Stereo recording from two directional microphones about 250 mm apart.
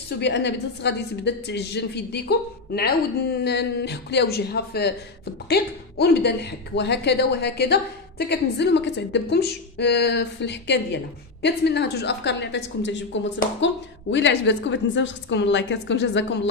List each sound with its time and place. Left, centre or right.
0.2 s a woman's voice: left